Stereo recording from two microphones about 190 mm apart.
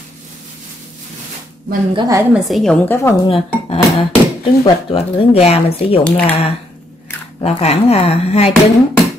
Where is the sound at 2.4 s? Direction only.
Centre (ahead or behind).